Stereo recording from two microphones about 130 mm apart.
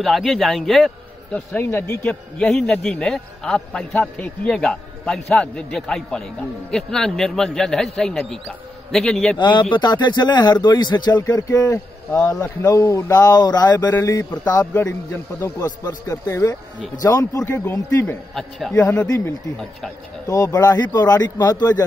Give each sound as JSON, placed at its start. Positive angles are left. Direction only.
{"t": 0.0, "sound": "a man's voice", "side_deg": 0}
{"t": 1.5, "sound": "speech", "side_deg": 15}
{"t": 2.0, "sound": "speech", "side_deg": 5}
{"t": 9.4, "sound": "speech", "side_deg": 35}
{"t": 15.4, "sound": "speech", "side_deg": 30}
{"t": 18.7, "sound": "speech", "side_deg": 15}
{"t": 20.2, "sound": "speech", "side_deg": 25}